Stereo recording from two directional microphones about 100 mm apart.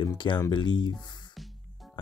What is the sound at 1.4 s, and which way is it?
Music, centre (ahead or behind).